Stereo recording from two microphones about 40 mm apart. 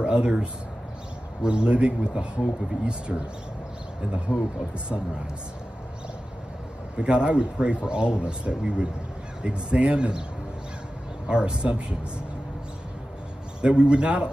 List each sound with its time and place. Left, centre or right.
0.0 s speech: right
7.0 s speech: right
11.2 s speech: right
13.6 s speech: right